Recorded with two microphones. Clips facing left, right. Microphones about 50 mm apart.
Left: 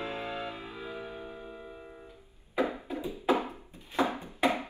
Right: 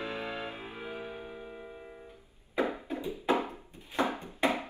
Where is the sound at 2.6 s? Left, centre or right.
Right.